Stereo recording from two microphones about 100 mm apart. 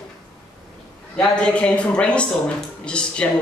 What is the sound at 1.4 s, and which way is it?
Speech, 10° left (ahead or behind).